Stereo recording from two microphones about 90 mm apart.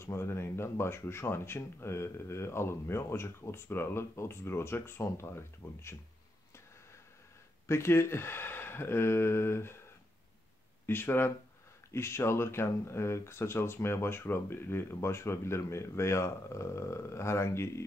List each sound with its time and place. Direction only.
0.0 s speech: 30° left (ahead or behind)
7.6 s speech: 30° left (ahead or behind)
10.9 s speech: 25° left (ahead or behind)